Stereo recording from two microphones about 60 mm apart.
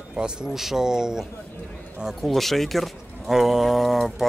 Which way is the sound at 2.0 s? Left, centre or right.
Centre.